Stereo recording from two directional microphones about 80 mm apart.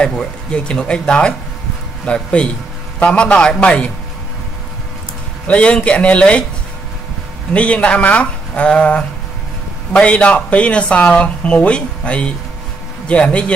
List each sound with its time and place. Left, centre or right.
0.1 s speech: centre
5.5 s speech: centre
7.5 s speech: centre